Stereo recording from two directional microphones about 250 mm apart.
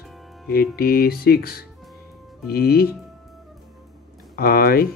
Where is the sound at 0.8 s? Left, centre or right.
Left.